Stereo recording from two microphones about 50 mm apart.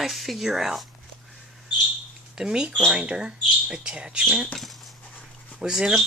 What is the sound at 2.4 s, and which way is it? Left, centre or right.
Speech, centre.